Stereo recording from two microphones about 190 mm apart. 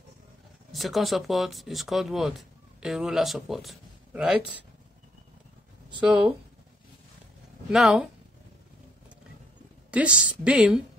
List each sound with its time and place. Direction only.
0.7 s speech: centre (ahead or behind)
5.9 s speech: 5° right (ahead or behind)
7.7 s speech: centre (ahead or behind)
9.8 s speech: 5° right (ahead or behind)